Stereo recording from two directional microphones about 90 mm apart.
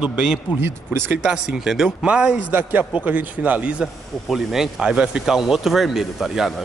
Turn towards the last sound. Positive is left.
turn(degrees=-5)  # may be behind; listen again after turning